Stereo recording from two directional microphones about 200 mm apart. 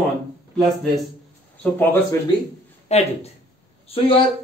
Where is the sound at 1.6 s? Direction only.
10° left (ahead or behind).